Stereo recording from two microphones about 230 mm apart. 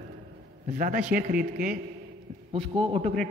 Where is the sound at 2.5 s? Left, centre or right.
Right.